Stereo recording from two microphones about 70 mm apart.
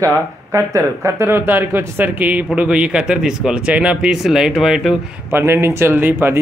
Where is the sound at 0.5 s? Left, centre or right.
Right; by 4.9 s centre.